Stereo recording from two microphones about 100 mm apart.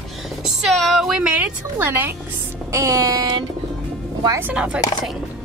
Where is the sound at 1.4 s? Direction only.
20° right (ahead or behind).